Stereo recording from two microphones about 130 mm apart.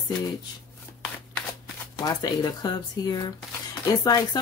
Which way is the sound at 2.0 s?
30° left (ahead or behind).